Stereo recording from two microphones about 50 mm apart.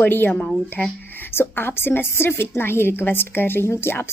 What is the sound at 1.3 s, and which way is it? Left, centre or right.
Speech, left.